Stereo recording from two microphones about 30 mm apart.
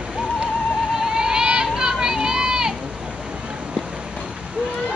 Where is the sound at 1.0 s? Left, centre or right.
Centre.